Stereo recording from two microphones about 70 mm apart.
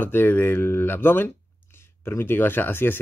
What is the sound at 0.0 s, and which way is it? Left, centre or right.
Speech, left.